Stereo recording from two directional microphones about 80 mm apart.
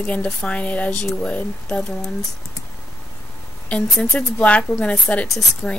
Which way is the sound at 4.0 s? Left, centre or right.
Centre.